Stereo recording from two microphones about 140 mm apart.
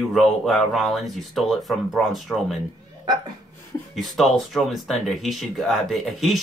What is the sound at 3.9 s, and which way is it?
Speech, centre (ahead or behind).